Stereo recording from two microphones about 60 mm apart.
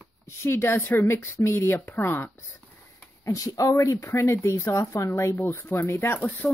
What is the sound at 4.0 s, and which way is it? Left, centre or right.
Speech, left.